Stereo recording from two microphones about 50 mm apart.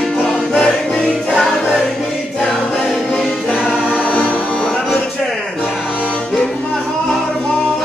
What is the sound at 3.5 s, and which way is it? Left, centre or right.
Music, centre.